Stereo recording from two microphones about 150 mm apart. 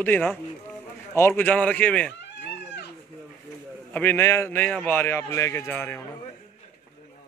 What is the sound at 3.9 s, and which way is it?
A man's voice, 15° left (ahead or behind).